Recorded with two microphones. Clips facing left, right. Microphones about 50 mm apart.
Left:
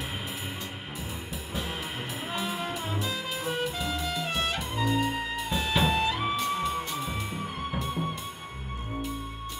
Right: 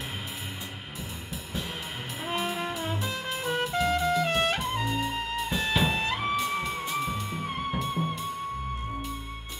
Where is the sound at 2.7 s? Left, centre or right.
Centre.